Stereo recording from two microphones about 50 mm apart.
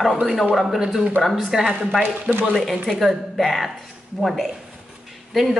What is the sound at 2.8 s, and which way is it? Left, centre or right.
A woman's voice, centre.